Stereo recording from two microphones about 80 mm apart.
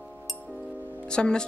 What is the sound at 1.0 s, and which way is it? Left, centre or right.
Speech, centre.